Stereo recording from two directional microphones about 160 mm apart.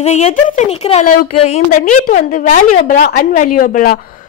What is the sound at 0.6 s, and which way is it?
Speech, 40° left (ahead or behind).